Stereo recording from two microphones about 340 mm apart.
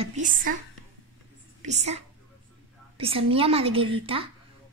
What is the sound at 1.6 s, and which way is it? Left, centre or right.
A woman's voice, centre.